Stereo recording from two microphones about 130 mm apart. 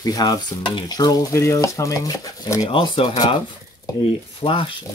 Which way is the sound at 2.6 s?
40° left (ahead or behind).